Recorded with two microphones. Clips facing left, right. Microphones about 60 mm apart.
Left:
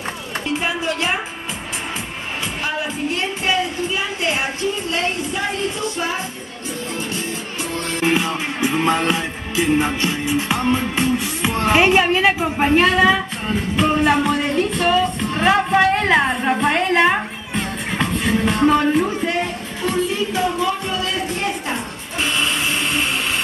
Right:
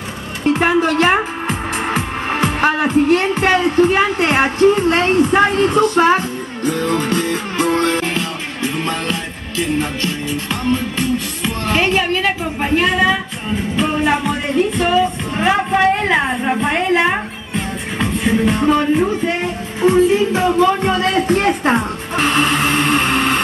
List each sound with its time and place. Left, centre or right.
0.5 s a woman's voice: right
7.5 s music: right
8.0 s music: centre
13.7 s music: centre
16.1 s speech: centre
18.8 s music: centre
19.8 s speech: right